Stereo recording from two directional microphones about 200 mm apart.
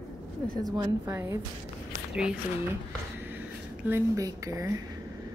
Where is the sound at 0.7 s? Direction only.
15° right (ahead or behind).